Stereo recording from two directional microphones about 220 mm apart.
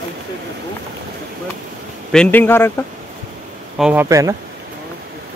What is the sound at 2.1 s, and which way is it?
Speech, 5° left (ahead or behind).